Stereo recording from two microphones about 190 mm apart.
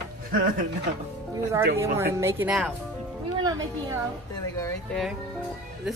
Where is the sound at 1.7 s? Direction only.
15° right (ahead or behind).